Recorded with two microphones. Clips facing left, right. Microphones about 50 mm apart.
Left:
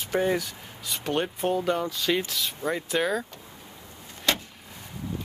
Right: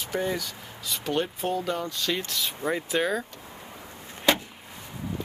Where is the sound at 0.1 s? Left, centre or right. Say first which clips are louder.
Left 4 dB; centre.